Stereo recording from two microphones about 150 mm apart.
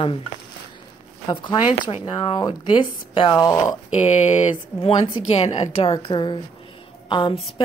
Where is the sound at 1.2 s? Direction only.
30° left (ahead or behind).